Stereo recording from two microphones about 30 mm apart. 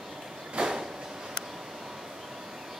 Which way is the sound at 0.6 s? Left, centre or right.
Right.